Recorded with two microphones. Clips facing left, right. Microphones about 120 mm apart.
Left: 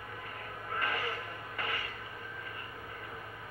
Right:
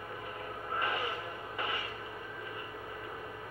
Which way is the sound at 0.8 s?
20° right (ahead or behind).